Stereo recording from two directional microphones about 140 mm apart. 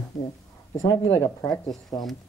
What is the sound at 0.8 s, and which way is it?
Speech, 30° left (ahead or behind).